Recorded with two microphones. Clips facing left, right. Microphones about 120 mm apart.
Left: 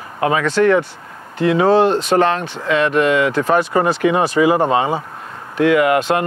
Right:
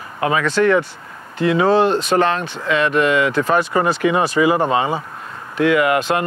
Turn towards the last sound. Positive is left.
turn(degrees=50)  # may be behind; listen again after turning